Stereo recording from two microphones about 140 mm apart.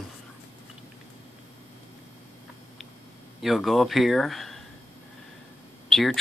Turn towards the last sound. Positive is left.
turn(degrees=0)  # may be behind; listen again after turning